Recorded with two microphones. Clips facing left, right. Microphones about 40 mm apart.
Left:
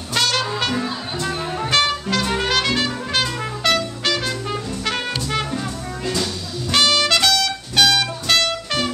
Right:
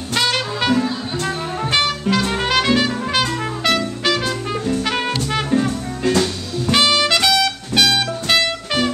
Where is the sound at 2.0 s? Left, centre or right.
Centre.